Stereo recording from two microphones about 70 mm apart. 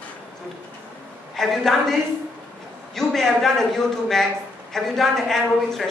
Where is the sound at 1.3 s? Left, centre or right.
Centre.